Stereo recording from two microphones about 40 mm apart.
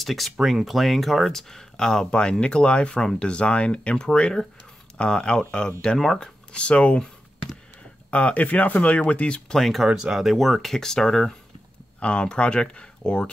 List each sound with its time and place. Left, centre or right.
0.0 s speech: centre
1.5 s speech: centre
6.5 s speech: left
8.1 s speech: left
9.6 s speech: centre
9.8 s speech: right
10.1 s speech: centre
12.0 s speech: left